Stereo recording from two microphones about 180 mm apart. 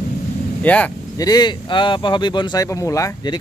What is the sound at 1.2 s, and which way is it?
Speech, 25° left (ahead or behind).